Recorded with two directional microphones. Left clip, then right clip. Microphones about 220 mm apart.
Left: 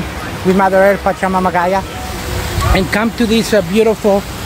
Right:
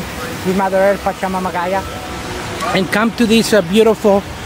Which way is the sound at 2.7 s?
10° right (ahead or behind).